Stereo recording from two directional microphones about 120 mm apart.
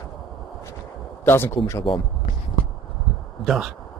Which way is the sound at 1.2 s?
20° left (ahead or behind).